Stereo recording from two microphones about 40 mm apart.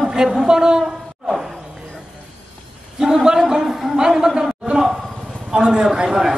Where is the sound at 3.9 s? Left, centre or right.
Centre.